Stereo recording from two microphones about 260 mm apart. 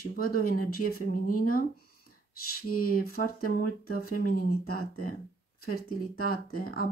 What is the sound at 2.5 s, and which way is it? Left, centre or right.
Speech, left.